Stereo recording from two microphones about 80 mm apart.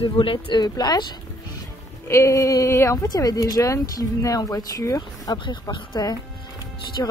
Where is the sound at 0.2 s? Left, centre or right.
Left.